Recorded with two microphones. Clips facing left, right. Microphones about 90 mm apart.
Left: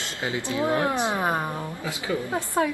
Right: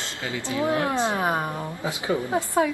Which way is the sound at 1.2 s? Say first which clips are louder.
Right 1 dB; 15° right (ahead or behind).